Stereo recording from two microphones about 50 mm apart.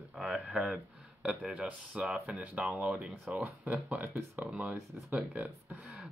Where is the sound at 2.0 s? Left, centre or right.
Centre.